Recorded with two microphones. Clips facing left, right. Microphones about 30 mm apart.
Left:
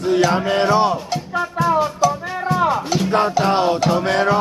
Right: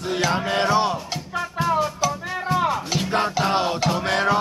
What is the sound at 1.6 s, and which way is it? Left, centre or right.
Music, right.